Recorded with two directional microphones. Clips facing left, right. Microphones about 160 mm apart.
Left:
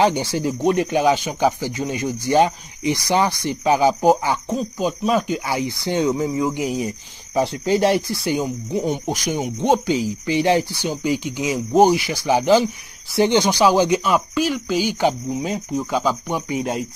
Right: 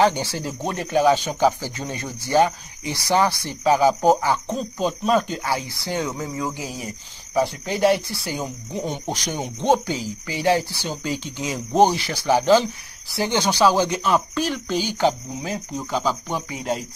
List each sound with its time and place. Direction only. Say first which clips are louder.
0.0 s speech: left 2 dB; 15° left (ahead or behind)